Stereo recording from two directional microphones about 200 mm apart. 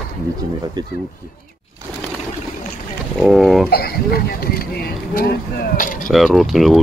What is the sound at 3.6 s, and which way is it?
Speech, 50° left (ahead or behind).